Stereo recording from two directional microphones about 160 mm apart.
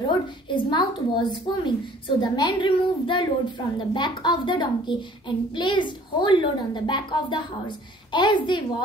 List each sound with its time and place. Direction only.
0.5 s a woman's voice: 30° left (ahead or behind)